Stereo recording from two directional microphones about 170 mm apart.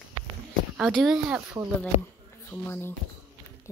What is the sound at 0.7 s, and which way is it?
Speech, 5° right (ahead or behind).